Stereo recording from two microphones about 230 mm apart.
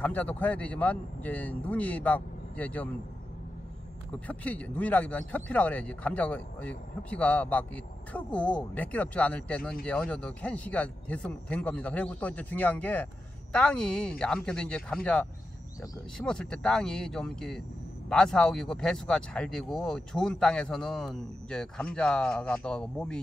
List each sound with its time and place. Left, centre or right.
0.0 s speech: centre
4.1 s speech: centre